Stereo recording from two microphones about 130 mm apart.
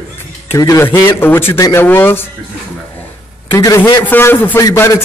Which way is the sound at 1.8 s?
15° left (ahead or behind).